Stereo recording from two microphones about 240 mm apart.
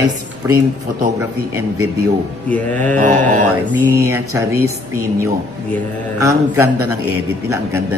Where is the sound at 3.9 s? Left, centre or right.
Centre.